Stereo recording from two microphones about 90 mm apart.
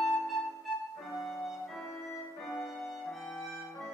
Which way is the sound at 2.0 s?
25° left (ahead or behind).